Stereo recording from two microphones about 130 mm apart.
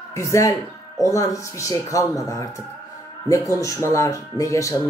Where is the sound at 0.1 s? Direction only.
25° left (ahead or behind).